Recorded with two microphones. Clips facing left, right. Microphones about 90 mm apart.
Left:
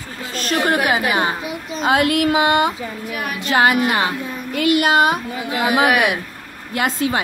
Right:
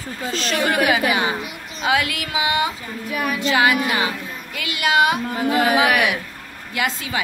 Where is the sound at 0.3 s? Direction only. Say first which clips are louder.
Left 3 dB; 50° left (ahead or behind).